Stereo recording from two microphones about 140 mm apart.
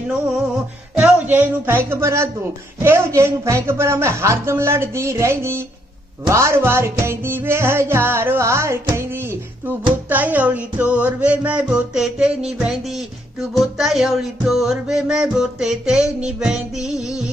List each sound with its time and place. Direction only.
0.9 s speech: 10° right (ahead or behind)
6.2 s music: 20° right (ahead or behind)
13.7 s music: 5° right (ahead or behind)